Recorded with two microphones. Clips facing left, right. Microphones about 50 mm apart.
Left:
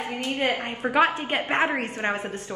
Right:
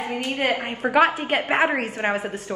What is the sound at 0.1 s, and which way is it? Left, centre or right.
Speech, right.